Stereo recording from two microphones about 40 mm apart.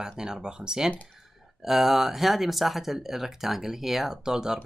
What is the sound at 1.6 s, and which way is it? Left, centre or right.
Speech, centre.